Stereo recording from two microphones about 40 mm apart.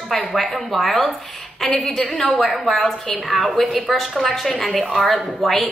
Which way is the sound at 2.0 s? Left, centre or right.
Left.